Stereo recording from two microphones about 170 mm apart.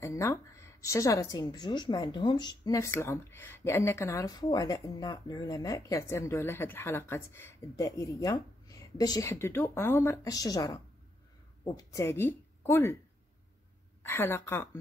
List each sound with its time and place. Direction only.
0.0 s a woman's voice: 15° left (ahead or behind)
14.0 s a woman's voice: 10° left (ahead or behind)